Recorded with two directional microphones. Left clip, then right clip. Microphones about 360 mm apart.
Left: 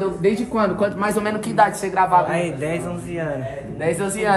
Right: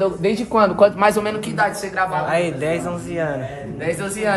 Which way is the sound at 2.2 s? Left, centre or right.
Centre.